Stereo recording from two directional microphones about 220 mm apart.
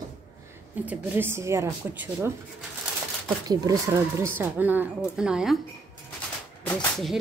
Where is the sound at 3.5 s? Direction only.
15° right (ahead or behind).